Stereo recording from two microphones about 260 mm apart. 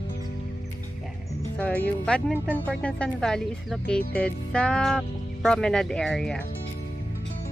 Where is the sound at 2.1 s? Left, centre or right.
Centre.